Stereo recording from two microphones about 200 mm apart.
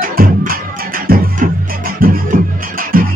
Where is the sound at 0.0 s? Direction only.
45° right (ahead or behind).